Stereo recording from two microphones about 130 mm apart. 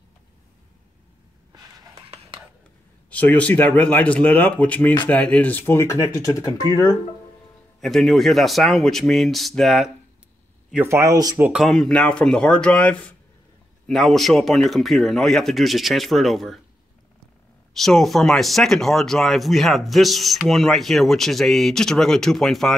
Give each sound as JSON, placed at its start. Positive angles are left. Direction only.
{"t": 3.1, "sound": "speech", "side_deg": 10}
{"t": 5.9, "sound": "speech", "side_deg": 30}
{"t": 7.8, "sound": "speech", "side_deg": 0}
{"t": 10.9, "sound": "speech", "side_deg": -20}
{"t": 11.5, "sound": "speech", "side_deg": 0}
{"t": 17.7, "sound": "speech", "side_deg": 0}